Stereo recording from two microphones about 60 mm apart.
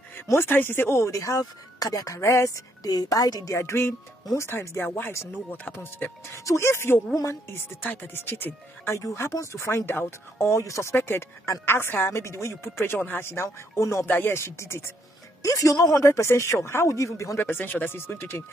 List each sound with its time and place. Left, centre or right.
0.3 s speech: left
2.1 s a woman's voice: left
3.5 s speech: left
6.3 s speech: left
8.8 s speech: left
9.1 s speech: left
11.0 s speech: left
14.0 s speech: left
14.3 s speech: left
15.4 s speech: left
17.4 s speech: left